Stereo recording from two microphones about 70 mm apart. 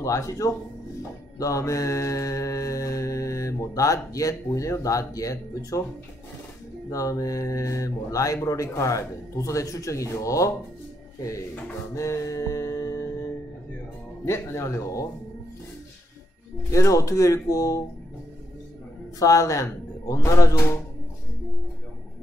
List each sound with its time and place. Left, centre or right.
0.0 s mantra: left
6.9 s mantra: left
11.9 s mantra: left
14.2 s mantra: left
16.7 s mantra: left
19.1 s mantra: left